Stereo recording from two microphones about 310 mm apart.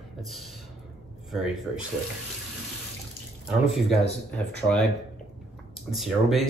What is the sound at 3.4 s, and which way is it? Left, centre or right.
Speech, centre.